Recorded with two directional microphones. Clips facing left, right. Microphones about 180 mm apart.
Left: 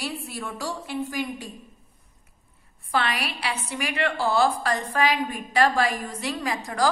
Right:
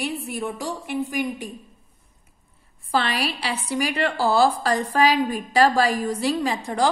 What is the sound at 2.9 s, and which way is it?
A woman's voice, 30° right (ahead or behind).